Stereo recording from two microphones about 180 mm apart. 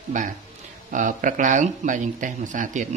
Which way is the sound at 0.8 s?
45° right (ahead or behind).